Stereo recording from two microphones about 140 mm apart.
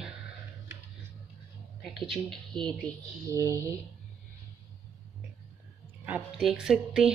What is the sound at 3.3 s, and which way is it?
Speech, 20° right (ahead or behind).